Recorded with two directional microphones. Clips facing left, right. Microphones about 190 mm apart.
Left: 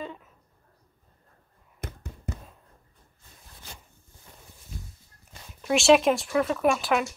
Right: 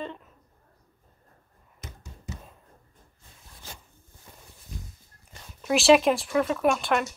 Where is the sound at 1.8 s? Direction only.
55° left (ahead or behind).